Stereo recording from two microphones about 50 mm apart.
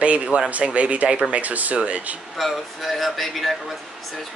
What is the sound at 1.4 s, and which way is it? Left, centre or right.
Speech, right.